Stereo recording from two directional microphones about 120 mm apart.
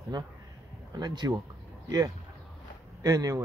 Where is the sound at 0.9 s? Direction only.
40° right (ahead or behind).